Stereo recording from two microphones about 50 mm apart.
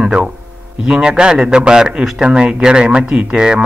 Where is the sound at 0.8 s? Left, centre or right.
Centre.